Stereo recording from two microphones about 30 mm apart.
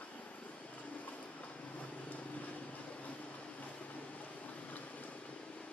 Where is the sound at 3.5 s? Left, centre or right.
Left.